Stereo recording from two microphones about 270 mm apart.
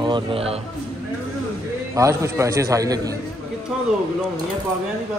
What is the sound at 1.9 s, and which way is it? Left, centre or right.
A man's voice, centre.